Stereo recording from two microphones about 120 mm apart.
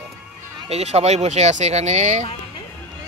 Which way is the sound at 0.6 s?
60° right (ahead or behind).